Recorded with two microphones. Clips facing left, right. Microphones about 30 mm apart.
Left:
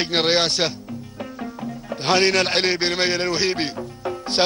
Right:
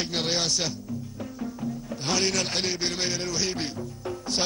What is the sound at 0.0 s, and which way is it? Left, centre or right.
A man's voice, left.